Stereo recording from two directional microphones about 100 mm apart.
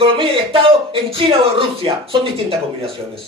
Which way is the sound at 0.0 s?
65° right (ahead or behind).